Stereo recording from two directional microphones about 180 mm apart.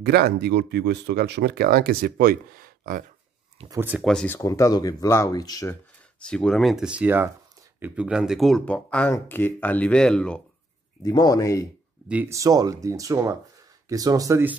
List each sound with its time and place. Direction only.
0.0 s speech: 65° right (ahead or behind)
3.6 s speech: 35° right (ahead or behind)
4.0 s speech: 5° left (ahead or behind)
4.4 s speech: 20° left (ahead or behind)
6.1 s speech: 5° left (ahead or behind)
11.0 s speech: 20° left (ahead or behind)
12.1 s speech: 10° right (ahead or behind)